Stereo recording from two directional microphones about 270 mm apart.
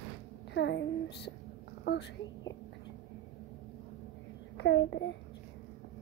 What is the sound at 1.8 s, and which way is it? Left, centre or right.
Speech, left.